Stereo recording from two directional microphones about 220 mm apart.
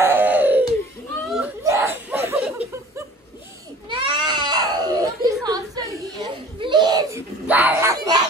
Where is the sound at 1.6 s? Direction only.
15° right (ahead or behind).